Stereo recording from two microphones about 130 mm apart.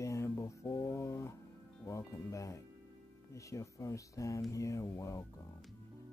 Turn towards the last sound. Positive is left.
turn(degrees=25)  # may be behind; listen again after turning